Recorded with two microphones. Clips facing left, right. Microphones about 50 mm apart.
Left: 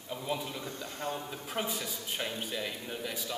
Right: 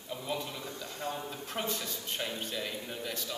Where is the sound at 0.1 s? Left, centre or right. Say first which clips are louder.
Left 1 dB; centre.